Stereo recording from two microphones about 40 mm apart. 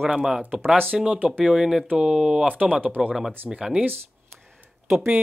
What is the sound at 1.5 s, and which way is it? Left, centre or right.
Speech, centre.